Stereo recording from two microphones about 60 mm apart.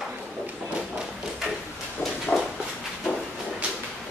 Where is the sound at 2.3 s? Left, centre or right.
Left.